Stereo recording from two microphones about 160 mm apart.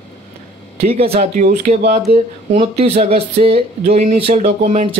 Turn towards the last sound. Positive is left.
turn(degrees=-45)  # may be behind; listen again after turning